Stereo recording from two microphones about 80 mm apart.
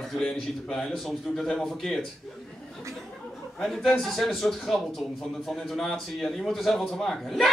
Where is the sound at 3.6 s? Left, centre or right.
Centre.